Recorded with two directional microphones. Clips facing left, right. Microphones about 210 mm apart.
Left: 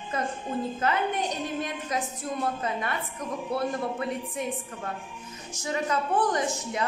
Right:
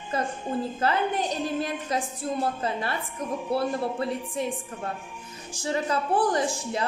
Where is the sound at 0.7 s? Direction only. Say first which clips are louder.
Right 2 dB; 30° right (ahead or behind).